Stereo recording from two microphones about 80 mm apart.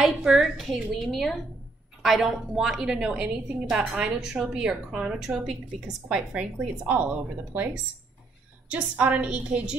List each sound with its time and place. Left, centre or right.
0.0 s a woman's voice: centre